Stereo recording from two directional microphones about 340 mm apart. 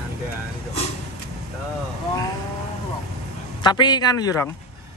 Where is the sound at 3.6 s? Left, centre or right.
Centre.